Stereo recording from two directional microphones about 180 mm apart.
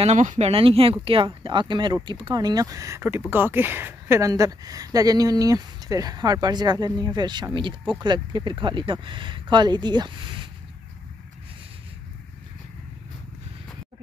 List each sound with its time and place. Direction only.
0.0 s speech: 40° right (ahead or behind)